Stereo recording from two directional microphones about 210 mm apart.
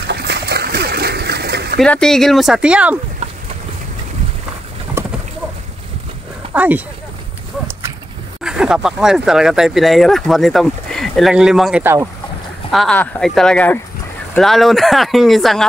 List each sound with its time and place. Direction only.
0.1 s splash: 50° right (ahead or behind)
1.8 s speech: 5° left (ahead or behind)
5.0 s pigeon: 10° right (ahead or behind)
6.5 s speech: 10° right (ahead or behind)
8.5 s speech: 5° right (ahead or behind)
12.7 s speech: 5° left (ahead or behind)